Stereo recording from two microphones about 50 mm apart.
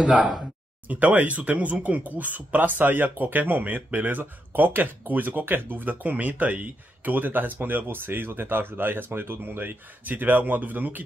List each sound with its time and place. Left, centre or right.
0.0 s speech: right
0.8 s speech: right